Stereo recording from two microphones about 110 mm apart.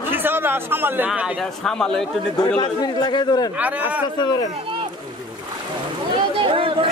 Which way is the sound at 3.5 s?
15° right (ahead or behind).